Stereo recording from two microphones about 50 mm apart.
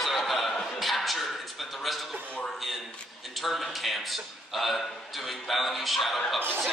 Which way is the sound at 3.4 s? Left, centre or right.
Centre.